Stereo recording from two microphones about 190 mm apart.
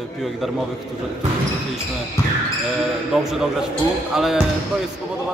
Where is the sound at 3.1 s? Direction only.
Centre (ahead or behind).